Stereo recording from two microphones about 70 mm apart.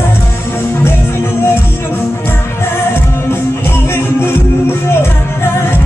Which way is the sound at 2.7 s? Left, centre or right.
Left.